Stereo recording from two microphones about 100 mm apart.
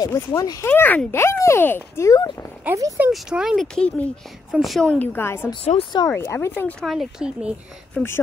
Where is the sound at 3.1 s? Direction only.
5° right (ahead or behind).